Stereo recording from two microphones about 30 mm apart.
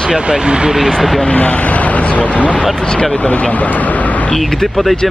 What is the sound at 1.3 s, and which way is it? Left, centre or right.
Speech, left.